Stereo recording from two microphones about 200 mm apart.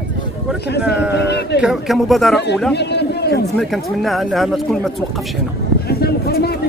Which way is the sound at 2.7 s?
55° left (ahead or behind).